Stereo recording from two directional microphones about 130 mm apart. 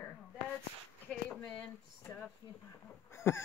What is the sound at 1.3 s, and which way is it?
Speech, 10° left (ahead or behind).